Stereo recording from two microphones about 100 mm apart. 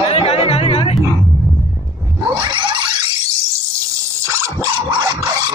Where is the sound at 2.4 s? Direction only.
55° right (ahead or behind).